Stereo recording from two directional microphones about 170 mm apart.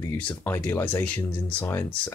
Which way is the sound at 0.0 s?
10° left (ahead or behind).